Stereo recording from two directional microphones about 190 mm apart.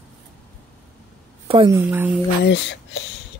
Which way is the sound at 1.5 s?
25° right (ahead or behind).